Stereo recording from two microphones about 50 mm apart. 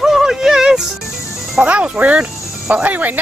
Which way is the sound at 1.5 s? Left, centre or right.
Right.